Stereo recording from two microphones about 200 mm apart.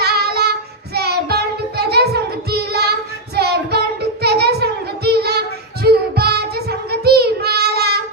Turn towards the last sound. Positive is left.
turn(degrees=-55)  # may be behind; listen again after turning